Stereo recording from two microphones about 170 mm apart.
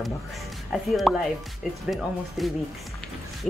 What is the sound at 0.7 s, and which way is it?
Speech, centre (ahead or behind).